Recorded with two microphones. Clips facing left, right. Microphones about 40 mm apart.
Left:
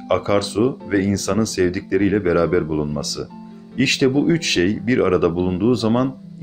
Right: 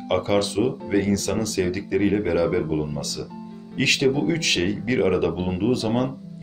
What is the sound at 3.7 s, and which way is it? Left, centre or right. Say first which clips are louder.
Speech: left 4 dB; left.